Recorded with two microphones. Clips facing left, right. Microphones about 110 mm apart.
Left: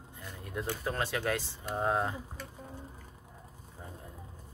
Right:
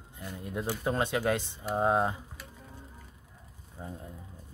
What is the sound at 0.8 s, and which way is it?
Speech, 20° right (ahead or behind).